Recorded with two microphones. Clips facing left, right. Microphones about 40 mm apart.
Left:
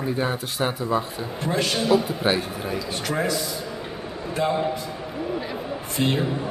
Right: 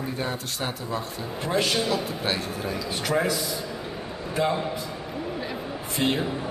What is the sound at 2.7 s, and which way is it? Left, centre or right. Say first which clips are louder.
Speech: right 1 dB; centre.